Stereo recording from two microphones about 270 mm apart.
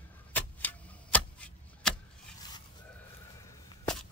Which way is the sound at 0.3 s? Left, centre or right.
Centre.